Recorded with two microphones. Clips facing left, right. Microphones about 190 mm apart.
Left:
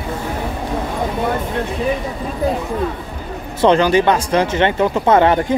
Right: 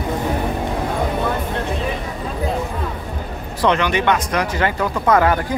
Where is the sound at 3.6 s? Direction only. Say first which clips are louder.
Left 5 dB; 30° left (ahead or behind).